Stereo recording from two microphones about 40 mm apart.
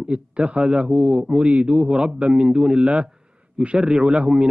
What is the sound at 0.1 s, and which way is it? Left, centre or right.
A man's voice, right.